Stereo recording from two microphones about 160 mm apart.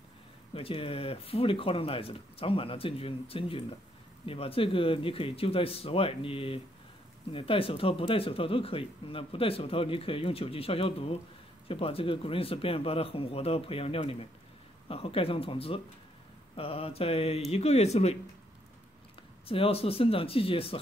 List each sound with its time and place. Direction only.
0.6 s speech: 35° left (ahead or behind)
19.4 s speech: 35° left (ahead or behind)